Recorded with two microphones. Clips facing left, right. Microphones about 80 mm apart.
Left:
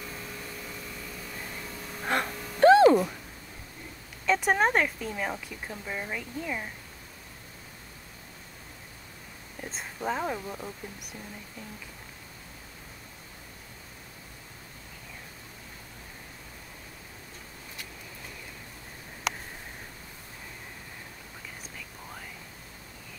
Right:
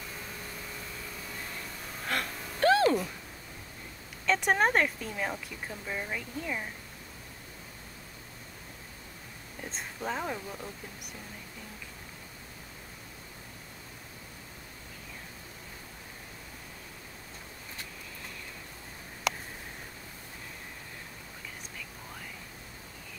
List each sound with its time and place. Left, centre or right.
2.0 s a sound: left
4.3 s a woman's voice: centre
9.6 s speech: centre